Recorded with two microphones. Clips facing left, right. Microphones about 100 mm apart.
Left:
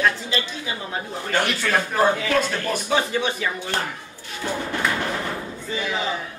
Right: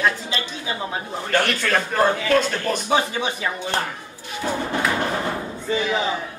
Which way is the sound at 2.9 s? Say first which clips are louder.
Even; 20° right (ahead or behind).